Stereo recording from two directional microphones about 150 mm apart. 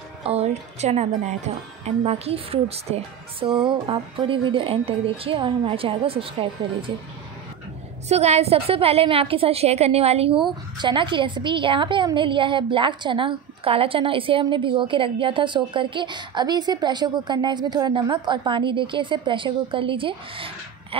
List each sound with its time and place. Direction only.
0.2 s a woman's voice: 45° right (ahead or behind)
8.1 s a woman's voice: 45° right (ahead or behind)